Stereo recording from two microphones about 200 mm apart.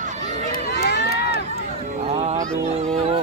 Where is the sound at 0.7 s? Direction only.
55° left (ahead or behind).